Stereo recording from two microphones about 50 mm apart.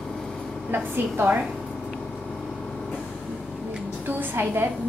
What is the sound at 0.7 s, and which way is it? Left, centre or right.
Speech, right.